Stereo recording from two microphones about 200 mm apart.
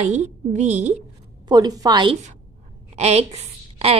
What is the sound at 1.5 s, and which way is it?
Speech, 20° right (ahead or behind).